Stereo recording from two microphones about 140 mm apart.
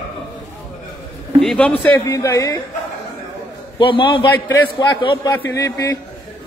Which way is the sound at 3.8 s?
35° left (ahead or behind).